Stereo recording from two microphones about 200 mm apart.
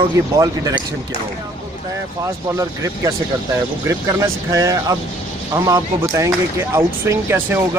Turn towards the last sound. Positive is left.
turn(degrees=-15)  # may be behind; listen again after turning